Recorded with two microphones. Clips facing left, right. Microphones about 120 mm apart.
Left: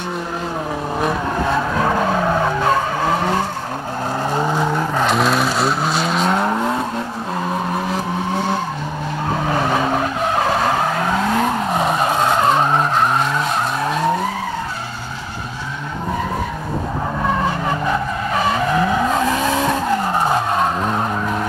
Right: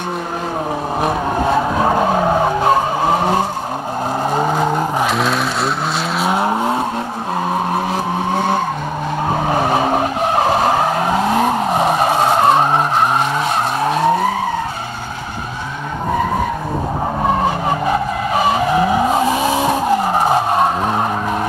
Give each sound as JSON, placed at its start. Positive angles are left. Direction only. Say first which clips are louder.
{"t": 2.4, "sound": "skidding", "louder": "right 3 dB", "side_deg": -20}
{"t": 5.0, "sound": "skidding", "louder": "left 1 dB", "side_deg": 0}
{"t": 9.5, "sound": "vehicle", "louder": "right 2 dB", "side_deg": -55}
{"t": 13.7, "sound": "skidding", "louder": "right 5 dB", "side_deg": -70}
{"t": 17.6, "sound": "vehicle", "louder": "right 3 dB", "side_deg": -15}
{"t": 20.3, "sound": "vehicle", "louder": "right 3 dB", "side_deg": -60}